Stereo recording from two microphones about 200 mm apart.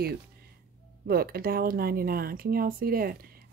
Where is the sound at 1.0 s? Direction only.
50° right (ahead or behind).